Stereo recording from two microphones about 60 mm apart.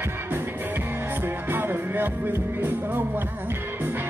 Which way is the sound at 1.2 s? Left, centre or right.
Right.